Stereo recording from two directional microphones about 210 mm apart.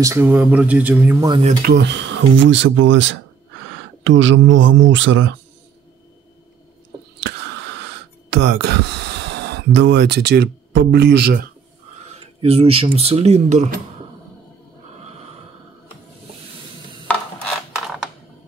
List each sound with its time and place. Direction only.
0.0 s speech: 10° right (ahead or behind)
1.3 s speech: 20° right (ahead or behind)
1.6 s speech: 50° right (ahead or behind)
7.2 s a sound: 55° right (ahead or behind)
12.0 s speech: 30° right (ahead or behind)
17.1 s a sound: 5° left (ahead or behind)